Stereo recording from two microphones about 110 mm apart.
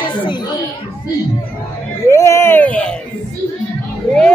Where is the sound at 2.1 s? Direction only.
25° left (ahead or behind); by 3.0 s 10° left (ahead or behind).